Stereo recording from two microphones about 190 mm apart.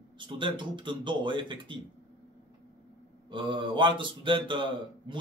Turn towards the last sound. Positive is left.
turn(degrees=-25)  # may be behind; listen again after turning